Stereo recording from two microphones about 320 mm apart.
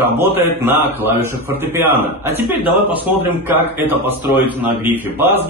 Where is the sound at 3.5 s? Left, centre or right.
Centre.